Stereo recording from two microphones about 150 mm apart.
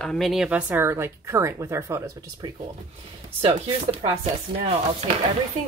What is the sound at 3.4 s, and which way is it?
Speech, 40° right (ahead or behind).